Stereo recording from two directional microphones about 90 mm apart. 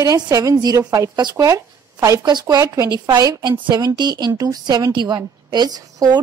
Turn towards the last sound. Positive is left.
turn(degrees=-45)  # may be behind; listen again after turning